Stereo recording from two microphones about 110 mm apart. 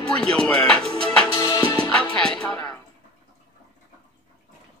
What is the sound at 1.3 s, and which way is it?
Music, 30° left (ahead or behind).